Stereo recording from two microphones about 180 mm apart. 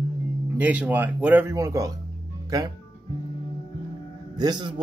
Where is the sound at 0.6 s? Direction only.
10° right (ahead or behind).